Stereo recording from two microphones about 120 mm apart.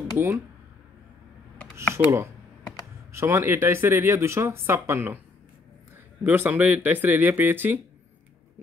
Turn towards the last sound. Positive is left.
turn(degrees=-15)  # may be behind; listen again after turning